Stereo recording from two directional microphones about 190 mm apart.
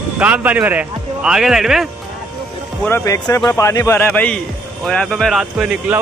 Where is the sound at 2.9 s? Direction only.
15° left (ahead or behind); by 6.0 s 5° right (ahead or behind).